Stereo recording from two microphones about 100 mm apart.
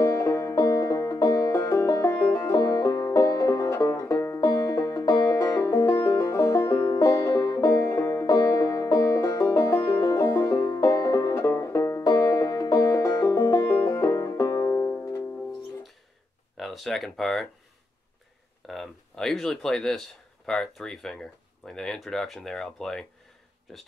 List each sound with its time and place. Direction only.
0.2 s music: 30° left (ahead or behind)
16.5 s speech: centre (ahead or behind)
18.7 s a sound: centre (ahead or behind)
20.4 s speech: 5° left (ahead or behind)